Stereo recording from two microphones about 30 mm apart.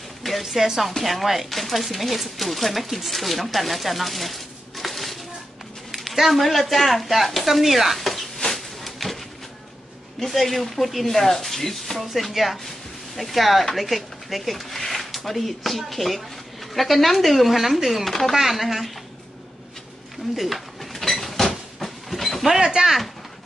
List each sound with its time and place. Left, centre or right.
0.2 s speech: centre
8.5 s a sound: centre
10.2 s speech: centre
20.3 s bird: centre
22.6 s speech: right